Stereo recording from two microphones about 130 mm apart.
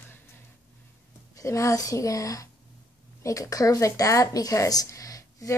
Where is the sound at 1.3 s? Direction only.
25° left (ahead or behind).